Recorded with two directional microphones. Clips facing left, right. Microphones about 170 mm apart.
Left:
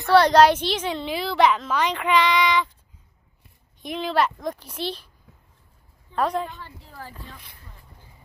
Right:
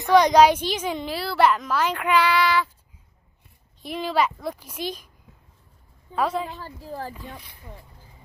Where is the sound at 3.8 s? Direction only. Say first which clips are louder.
Even; 5° right (ahead or behind).